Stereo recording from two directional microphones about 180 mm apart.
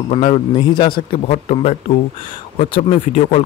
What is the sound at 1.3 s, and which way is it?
Speech, 35° left (ahead or behind).